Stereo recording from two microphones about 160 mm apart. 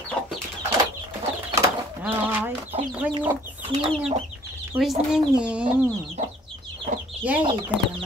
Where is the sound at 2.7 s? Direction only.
40° right (ahead or behind).